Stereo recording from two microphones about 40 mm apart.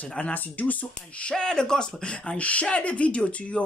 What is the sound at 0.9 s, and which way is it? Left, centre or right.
Speech, left.